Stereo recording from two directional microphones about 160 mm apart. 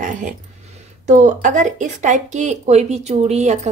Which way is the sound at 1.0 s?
50° right (ahead or behind).